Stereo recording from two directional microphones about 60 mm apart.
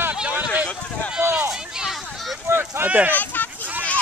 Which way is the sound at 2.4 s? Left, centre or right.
Right.